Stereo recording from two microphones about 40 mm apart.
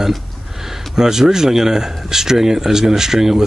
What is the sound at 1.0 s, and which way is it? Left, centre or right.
Speech, centre.